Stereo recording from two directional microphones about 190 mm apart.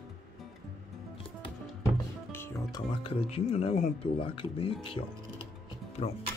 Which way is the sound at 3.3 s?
35° left (ahead or behind).